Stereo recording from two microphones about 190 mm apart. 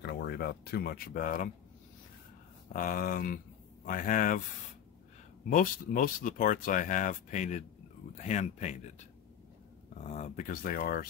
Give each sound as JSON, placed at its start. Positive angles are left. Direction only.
{"t": 0.0, "sound": "speech", "side_deg": 60}
{"t": 2.7, "sound": "speech", "side_deg": 50}
{"t": 5.5, "sound": "speech", "side_deg": 45}
{"t": 9.9, "sound": "speech", "side_deg": 40}